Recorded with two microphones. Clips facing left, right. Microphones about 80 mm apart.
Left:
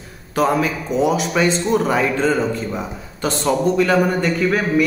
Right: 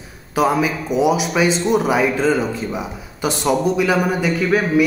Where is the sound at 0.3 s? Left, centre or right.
Centre.